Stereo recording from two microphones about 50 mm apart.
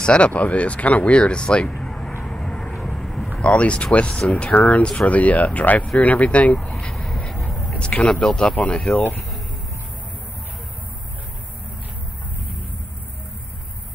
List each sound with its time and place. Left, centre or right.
0.0 s speech: left
2.2 s vehicle: centre
3.4 s speech: left
6.5 s speech: centre
6.9 s a sound: centre
7.2 s vehicle: centre
7.7 s speech: left
8.1 s speech: centre
8.5 s speech: left